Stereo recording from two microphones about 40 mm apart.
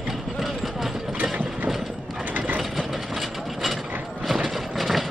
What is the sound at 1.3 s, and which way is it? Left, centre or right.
Ratchet, right.